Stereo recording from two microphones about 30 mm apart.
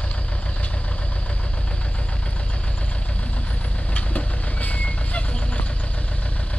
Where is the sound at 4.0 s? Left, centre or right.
Left.